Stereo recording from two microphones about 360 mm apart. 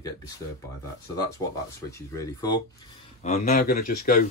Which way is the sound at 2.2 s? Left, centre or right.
Centre.